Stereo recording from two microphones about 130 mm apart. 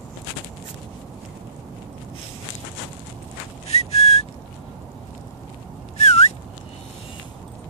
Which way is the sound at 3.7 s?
55° left (ahead or behind).